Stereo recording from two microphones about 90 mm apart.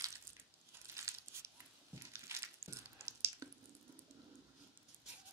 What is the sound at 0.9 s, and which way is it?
Crumpling, 30° right (ahead or behind).